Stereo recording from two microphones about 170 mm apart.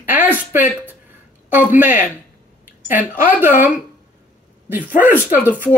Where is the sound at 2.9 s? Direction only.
50° left (ahead or behind).